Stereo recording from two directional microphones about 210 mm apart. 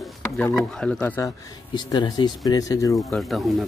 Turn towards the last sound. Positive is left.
turn(degrees=0)  # may be behind; listen again after turning